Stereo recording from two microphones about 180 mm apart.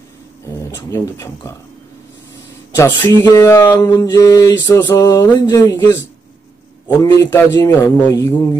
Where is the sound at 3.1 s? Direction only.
15° left (ahead or behind).